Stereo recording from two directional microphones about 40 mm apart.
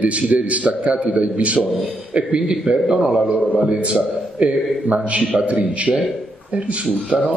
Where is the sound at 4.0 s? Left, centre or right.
Right.